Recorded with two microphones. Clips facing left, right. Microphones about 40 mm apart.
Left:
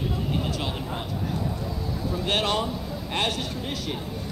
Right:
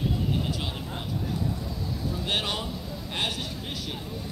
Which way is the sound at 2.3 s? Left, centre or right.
Centre.